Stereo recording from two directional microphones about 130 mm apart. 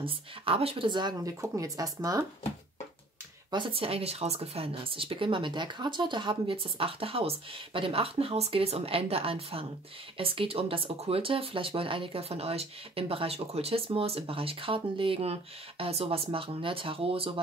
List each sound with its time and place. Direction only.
0.0 s speech: 45° right (ahead or behind); by 2.2 s 30° right (ahead or behind)
3.5 s speech: 40° right (ahead or behind)